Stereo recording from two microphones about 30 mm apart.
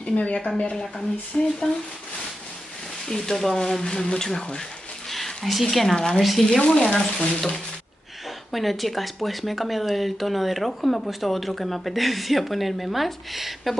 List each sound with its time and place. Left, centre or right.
0.0 s speech: left
1.3 s speech: left
3.1 s speech: centre
3.8 s speech: left
5.1 s speech: centre
5.9 s speech: left
6.2 s speech: centre
6.6 s speech: left
7.0 s speech: centre
8.5 s speech: centre